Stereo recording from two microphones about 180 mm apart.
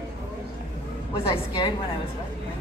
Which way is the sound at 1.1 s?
30° left (ahead or behind).